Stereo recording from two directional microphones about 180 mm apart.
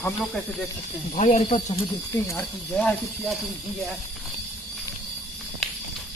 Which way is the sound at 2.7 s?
5° left (ahead or behind).